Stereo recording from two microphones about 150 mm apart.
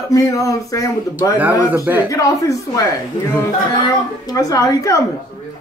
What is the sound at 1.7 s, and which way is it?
Speech, 15° right (ahead or behind).